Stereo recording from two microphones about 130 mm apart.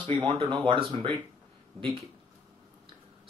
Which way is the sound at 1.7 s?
50° right (ahead or behind).